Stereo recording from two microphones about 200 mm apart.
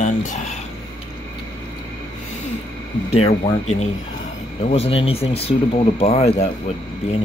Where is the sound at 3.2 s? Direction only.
30° left (ahead or behind).